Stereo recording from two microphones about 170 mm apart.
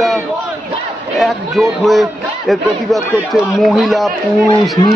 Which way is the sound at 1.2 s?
Centre (ahead or behind).